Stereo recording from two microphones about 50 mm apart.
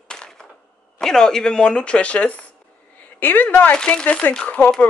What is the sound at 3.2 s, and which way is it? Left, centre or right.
Speech, left.